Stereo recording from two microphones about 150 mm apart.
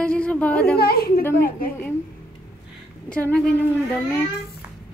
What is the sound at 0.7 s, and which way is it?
Speech, 90° left.